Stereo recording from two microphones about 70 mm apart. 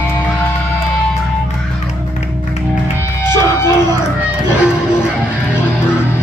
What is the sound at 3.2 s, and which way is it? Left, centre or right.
Music, left.